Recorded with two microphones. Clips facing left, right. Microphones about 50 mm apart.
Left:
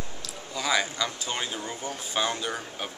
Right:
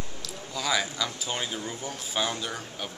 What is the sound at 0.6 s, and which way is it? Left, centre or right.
Speech, centre.